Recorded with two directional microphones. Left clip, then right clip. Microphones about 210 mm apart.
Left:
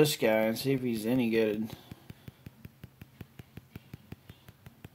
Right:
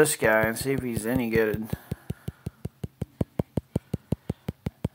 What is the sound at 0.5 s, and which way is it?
Speech, 30° right (ahead or behind).